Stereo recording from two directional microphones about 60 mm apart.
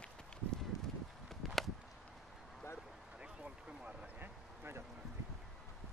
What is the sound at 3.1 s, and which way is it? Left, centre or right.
Run, centre.